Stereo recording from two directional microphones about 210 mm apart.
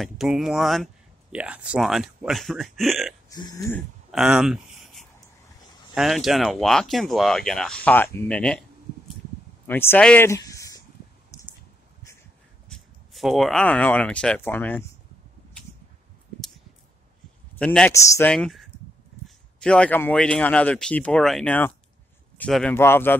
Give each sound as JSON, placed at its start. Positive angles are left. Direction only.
{"t": 0.0, "sound": "speech", "side_deg": 0}
{"t": 3.3, "sound": "speech", "side_deg": 20}
{"t": 3.7, "sound": "speech", "side_deg": 0}
{"t": 9.7, "sound": "speech", "side_deg": 10}
{"t": 11.3, "sound": "a sound", "side_deg": 15}
{"t": 12.6, "sound": "speech", "side_deg": 0}
{"t": 17.6, "sound": "speech", "side_deg": 5}